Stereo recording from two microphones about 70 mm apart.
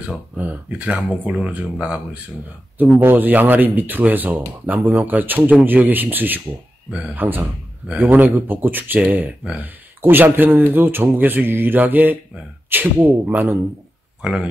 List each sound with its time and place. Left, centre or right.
0.4 s speech: right
2.8 s speech: right
6.9 s speech: centre